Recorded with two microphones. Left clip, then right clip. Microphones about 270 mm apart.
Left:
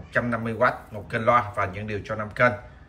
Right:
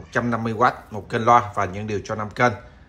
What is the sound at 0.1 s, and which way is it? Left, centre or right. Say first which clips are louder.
A man's voice: right 2 dB; centre.